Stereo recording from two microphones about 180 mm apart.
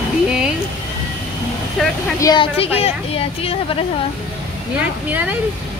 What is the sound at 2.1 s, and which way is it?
A woman's voice, 25° left (ahead or behind).